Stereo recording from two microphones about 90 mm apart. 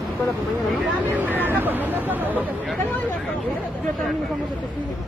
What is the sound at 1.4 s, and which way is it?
Speech, 20° right (ahead or behind).